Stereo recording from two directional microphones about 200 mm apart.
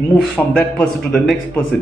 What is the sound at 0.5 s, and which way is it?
Speech, 5° left (ahead or behind).